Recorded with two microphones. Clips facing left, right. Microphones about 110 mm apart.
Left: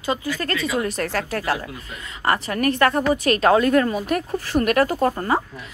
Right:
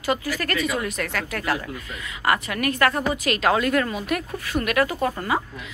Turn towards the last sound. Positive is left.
turn(degrees=35)  # may be behind; listen again after turning